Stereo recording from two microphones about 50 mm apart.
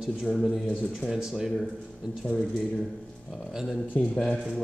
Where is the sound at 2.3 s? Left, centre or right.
Centre.